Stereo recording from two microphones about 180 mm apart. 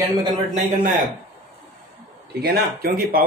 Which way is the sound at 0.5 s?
45° right (ahead or behind).